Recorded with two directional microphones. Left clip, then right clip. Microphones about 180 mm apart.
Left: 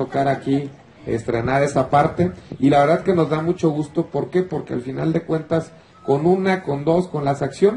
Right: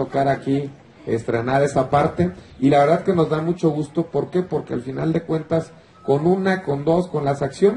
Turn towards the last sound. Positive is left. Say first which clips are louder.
# even
turn(degrees=20)  # may be behind; listen again after turning